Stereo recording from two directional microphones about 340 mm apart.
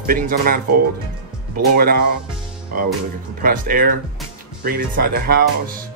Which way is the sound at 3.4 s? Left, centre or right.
Right.